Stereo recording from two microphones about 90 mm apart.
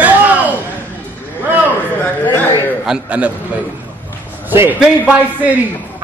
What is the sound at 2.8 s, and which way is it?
Speech, 10° right (ahead or behind).